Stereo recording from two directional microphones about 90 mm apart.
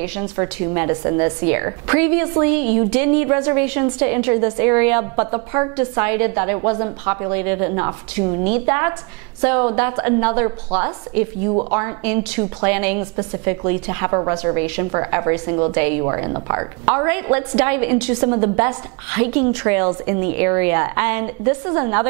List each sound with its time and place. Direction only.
0.0 s a woman's voice: 20° right (ahead or behind)